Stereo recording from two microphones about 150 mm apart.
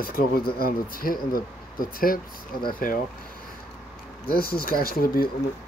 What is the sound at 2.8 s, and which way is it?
Speech, 65° left (ahead or behind).